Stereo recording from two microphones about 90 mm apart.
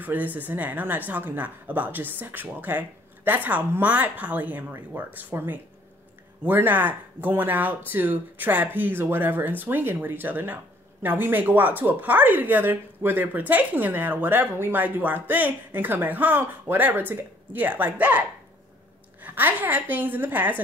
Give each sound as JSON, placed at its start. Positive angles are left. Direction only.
{"t": 0.0, "sound": "speech", "side_deg": -20}
{"t": 19.2, "sound": "speech", "side_deg": -20}